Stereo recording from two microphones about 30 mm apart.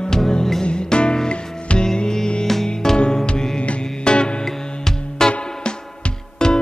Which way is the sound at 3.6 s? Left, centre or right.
Left.